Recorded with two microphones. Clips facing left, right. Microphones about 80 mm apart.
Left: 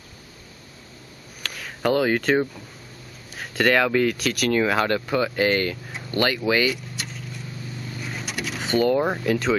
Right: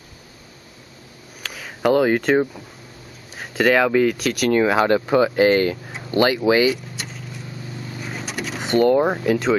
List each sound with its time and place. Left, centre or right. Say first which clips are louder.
1.4 s speech: right 4 dB; centre
6.7 s vehicle: right 4 dB; centre